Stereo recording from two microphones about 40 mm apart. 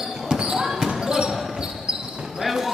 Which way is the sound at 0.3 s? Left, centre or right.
Centre.